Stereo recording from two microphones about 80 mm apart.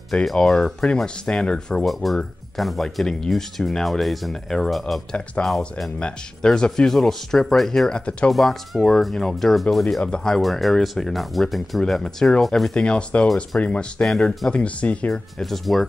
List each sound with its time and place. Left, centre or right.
0.1 s speech: centre
1.9 s speech: centre
8.0 s speech: centre
8.3 s speech: centre
12.7 s speech: centre
14.0 s speech: centre
14.5 s speech: centre